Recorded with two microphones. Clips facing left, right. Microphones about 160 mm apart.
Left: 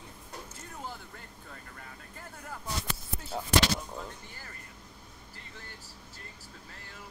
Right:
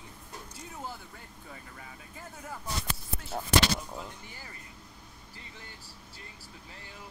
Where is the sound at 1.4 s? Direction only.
5° right (ahead or behind).